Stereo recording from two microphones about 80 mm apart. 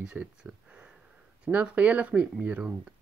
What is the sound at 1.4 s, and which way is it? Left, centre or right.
Speech, centre.